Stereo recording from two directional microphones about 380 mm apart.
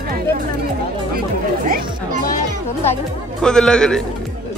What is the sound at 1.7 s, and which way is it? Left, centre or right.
Chatter, right.